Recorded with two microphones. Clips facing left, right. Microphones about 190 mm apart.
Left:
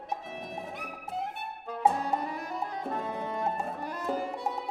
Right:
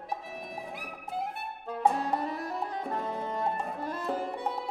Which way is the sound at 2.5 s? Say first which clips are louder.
Even; centre (ahead or behind).